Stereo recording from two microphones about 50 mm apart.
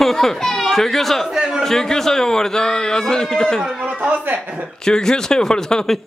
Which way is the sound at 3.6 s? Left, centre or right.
Centre.